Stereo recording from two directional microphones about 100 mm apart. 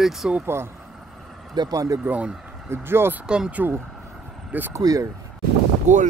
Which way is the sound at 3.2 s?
10° right (ahead or behind).